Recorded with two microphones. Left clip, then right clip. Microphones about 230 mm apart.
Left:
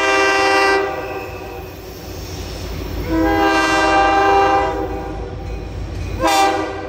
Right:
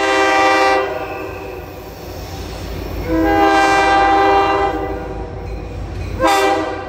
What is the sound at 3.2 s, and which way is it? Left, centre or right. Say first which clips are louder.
Train: right 3 dB; centre.